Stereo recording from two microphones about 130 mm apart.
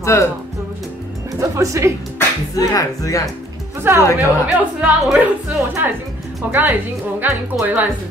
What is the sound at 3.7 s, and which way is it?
Music, 20° right (ahead or behind).